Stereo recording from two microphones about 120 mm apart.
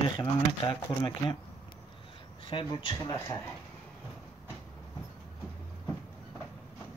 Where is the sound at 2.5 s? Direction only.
45° left (ahead or behind).